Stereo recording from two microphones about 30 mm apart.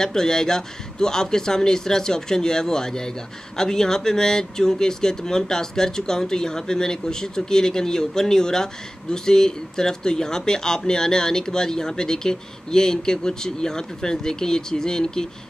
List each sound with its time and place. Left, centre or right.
0.0 s speech: centre